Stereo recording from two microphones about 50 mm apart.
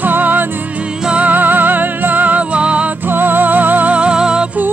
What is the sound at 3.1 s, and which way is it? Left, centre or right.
Music, right.